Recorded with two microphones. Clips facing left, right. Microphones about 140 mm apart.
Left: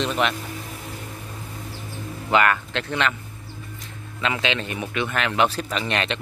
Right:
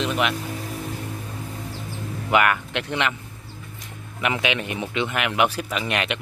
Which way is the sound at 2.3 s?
10° right (ahead or behind).